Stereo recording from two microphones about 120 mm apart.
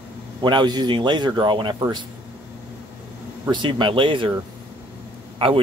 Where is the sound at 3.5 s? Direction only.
45° right (ahead or behind).